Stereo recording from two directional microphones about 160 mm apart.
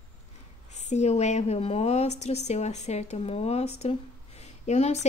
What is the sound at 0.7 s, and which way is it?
A woman's voice, 45° left (ahead or behind).